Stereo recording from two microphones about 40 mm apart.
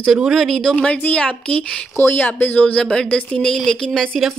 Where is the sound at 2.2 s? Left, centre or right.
Left.